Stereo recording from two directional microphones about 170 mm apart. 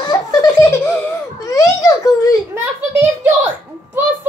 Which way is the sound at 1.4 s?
20° left (ahead or behind).